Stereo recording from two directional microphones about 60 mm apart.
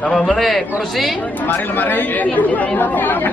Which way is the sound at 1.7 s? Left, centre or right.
Left.